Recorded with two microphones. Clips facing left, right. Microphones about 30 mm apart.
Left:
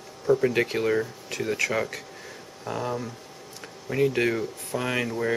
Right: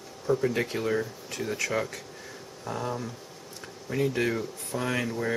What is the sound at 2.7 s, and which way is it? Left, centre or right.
Speech, centre.